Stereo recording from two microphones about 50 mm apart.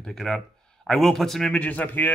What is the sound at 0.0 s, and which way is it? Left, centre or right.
Speech, centre.